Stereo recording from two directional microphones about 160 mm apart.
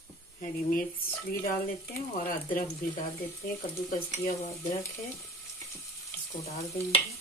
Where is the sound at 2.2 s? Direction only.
60° left (ahead or behind).